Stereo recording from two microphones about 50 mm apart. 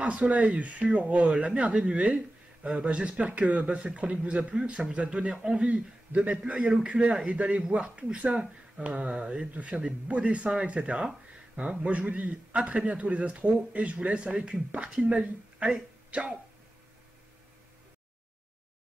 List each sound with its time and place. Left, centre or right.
0.0 s speech: right
5.7 s speech: right